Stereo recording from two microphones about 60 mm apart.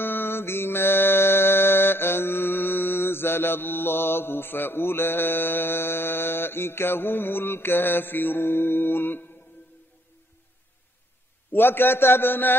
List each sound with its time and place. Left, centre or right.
0.0 s mantra: left
11.5 s a man's voice: left